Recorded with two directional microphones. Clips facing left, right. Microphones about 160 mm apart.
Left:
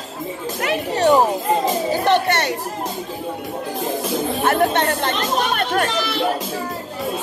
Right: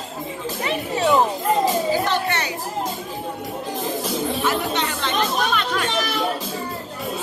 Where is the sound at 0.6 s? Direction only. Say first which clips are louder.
Left 3 dB; 80° left.